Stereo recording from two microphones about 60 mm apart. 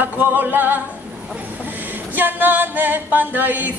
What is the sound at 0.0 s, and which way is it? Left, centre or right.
Music, right.